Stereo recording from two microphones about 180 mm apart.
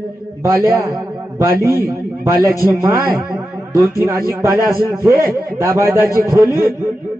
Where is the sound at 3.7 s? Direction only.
15° right (ahead or behind).